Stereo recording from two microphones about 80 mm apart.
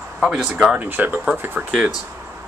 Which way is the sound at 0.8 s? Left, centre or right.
Right.